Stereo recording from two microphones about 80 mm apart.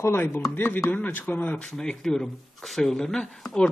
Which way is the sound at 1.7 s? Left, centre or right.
Centre.